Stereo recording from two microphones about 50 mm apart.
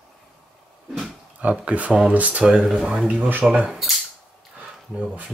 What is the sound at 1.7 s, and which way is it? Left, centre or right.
Speech, right.